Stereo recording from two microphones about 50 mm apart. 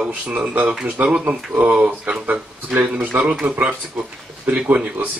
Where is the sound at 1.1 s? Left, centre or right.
Centre.